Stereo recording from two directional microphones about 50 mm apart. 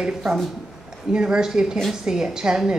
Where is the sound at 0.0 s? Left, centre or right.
Centre.